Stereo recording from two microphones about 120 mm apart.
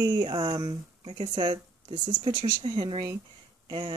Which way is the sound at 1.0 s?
50° right (ahead or behind).